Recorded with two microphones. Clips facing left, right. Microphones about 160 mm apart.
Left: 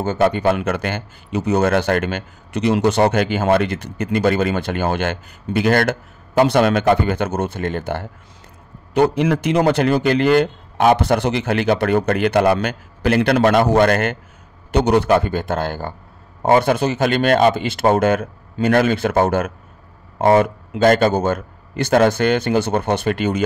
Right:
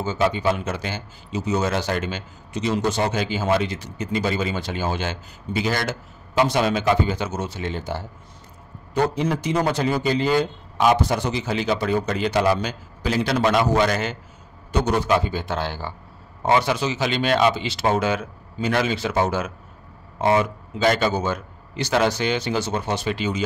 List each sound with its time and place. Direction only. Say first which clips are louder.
0.0 s a man's voice: left 5 dB; 60° left (ahead or behind)